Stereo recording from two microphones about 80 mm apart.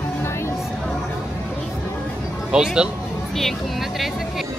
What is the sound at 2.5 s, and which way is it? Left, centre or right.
Speech, centre.